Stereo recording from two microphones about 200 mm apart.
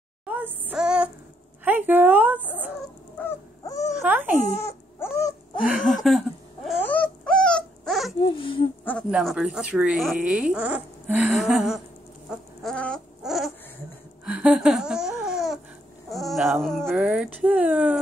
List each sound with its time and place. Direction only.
0.3 s child singing: 10° right (ahead or behind)
1.6 s speech: 10° right (ahead or behind)
3.2 s dog: 15° left (ahead or behind)
4.0 s speech: 10° right (ahead or behind)
4.6 s cat: 15° left (ahead or behind)
5.7 s speech: centre (ahead or behind)
6.0 s a sound: centre (ahead or behind)
6.8 s dog: 5° left (ahead or behind)
8.2 s speech: 25° left (ahead or behind)
9.1 s speech: 5° right (ahead or behind)
12.3 s bird: 5° left (ahead or behind)
14.2 s laughter: 5° right (ahead or behind)
16.1 s speech: centre (ahead or behind)